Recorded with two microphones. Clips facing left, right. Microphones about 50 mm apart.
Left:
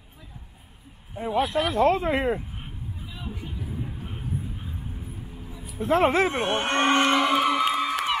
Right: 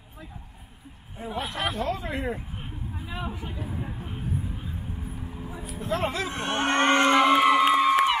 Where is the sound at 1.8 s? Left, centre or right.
Left.